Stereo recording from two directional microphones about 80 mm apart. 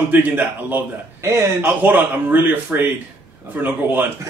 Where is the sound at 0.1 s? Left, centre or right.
Right.